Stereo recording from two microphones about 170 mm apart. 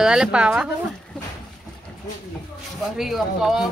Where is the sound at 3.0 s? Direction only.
Centre (ahead or behind).